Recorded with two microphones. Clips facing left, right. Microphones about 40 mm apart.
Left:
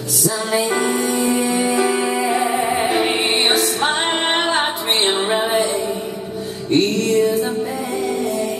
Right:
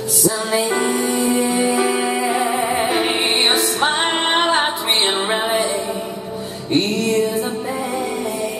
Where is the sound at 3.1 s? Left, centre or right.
Right.